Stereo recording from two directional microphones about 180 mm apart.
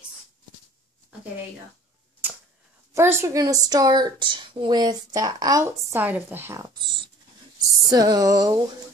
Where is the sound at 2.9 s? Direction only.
15° right (ahead or behind).